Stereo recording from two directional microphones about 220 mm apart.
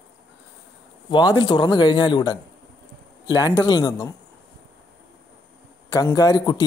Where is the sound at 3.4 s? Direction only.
15° left (ahead or behind).